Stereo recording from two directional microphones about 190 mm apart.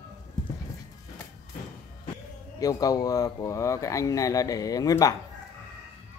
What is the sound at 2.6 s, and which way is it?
Speech, 20° left (ahead or behind).